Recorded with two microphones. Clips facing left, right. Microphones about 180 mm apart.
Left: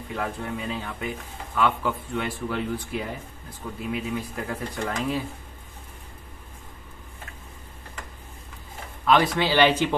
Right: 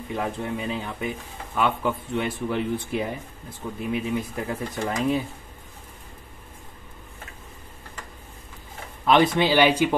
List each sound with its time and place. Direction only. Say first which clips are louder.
0.1 s speech: right 2 dB; 20° right (ahead or behind)
9.0 s speech: right 2 dB; 20° right (ahead or behind)
9.5 s speech: right 1 dB; 10° right (ahead or behind)